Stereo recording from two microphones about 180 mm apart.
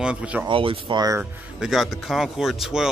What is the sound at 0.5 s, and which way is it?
Speech, 30° right (ahead or behind).